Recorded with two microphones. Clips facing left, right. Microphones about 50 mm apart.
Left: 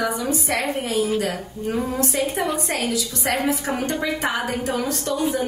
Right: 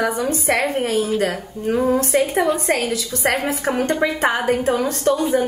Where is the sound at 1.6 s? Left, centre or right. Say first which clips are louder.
Right 6 dB; right.